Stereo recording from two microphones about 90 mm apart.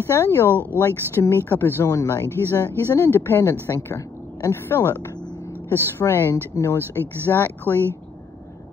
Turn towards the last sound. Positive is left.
turn(degrees=25)  # may be behind; listen again after turning